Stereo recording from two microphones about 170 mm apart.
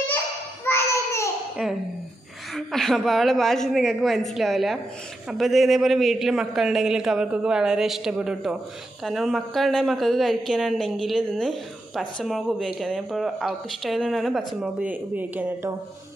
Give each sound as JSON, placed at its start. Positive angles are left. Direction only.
{"t": 0.7, "sound": "babbling", "side_deg": 15}
{"t": 1.6, "sound": "a woman's voice", "side_deg": -5}